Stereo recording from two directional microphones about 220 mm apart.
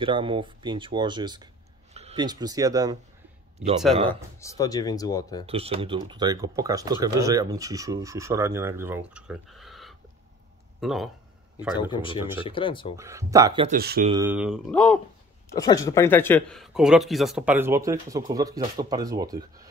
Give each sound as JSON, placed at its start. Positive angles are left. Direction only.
{"t": 0.0, "sound": "speech", "side_deg": -20}
{"t": 4.1, "sound": "speech", "side_deg": 15}
{"t": 5.5, "sound": "speech", "side_deg": -25}
{"t": 11.7, "sound": "speech", "side_deg": 20}
{"t": 12.9, "sound": "speech", "side_deg": -15}
{"t": 13.7, "sound": "speech", "side_deg": -45}
{"t": 14.2, "sound": "speech", "side_deg": -5}
{"t": 14.7, "sound": "speech", "side_deg": 5}